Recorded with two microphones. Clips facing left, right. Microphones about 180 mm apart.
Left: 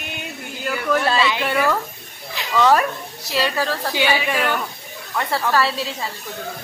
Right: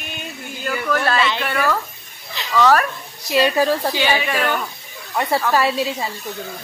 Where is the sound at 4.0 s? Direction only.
10° left (ahead or behind).